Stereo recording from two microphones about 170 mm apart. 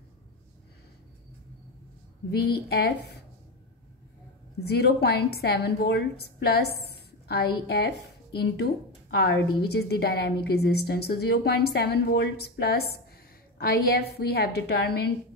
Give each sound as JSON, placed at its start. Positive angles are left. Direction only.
{"t": 2.7, "sound": "a woman's voice", "side_deg": 70}
{"t": 4.6, "sound": "a woman's voice", "side_deg": 70}